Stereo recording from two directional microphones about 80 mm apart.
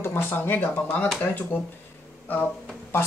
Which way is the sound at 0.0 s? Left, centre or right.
Left.